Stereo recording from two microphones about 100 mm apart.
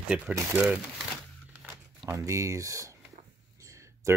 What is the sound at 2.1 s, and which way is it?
Speech, 30° right (ahead or behind).